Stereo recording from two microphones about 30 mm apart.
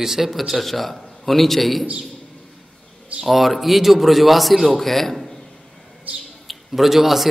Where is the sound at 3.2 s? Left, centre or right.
Centre.